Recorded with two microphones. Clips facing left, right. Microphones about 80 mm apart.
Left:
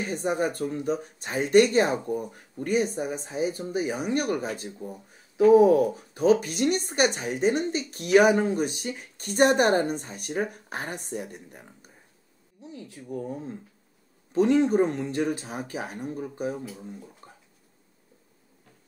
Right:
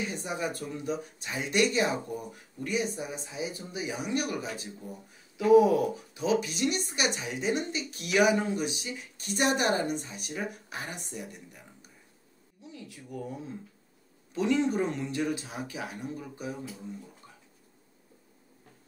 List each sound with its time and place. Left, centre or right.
0.0 s speech: left